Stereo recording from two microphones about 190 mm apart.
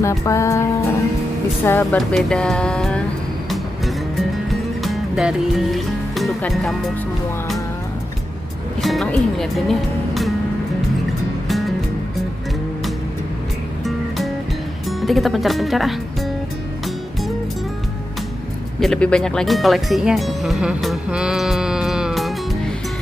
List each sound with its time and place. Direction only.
0.0 s music: 15° left (ahead or behind)
1.6 s speech: 10° left (ahead or behind)
3.4 s music: centre (ahead or behind)
8.8 s speech: centre (ahead or behind)
11.4 s music: centre (ahead or behind)
13.8 s music: centre (ahead or behind)
14.9 s speech: centre (ahead or behind)
18.8 s speech: 5° left (ahead or behind)